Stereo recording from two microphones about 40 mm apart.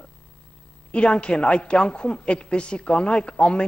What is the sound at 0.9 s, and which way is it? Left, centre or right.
A woman's voice, left.